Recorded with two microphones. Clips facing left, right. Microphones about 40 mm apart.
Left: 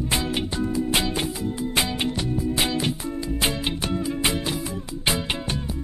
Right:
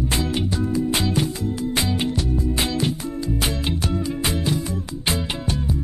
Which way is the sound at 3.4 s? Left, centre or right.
Left.